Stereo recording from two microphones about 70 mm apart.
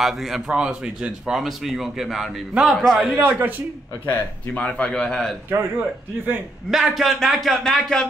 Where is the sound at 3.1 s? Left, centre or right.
Right.